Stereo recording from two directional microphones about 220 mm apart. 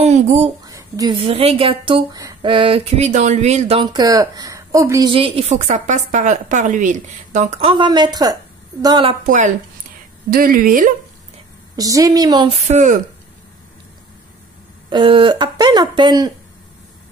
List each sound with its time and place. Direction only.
0.0 s a sound: 30° right (ahead or behind)
0.7 s a woman's voice: 15° right (ahead or behind)
9.2 s speech: 35° right (ahead or behind)
11.7 s a woman's voice: 15° right (ahead or behind)
12.6 s speech: 35° right (ahead or behind)
14.9 s a woman's voice: 20° right (ahead or behind)